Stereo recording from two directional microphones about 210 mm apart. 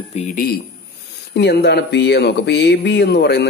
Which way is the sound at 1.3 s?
50° left (ahead or behind).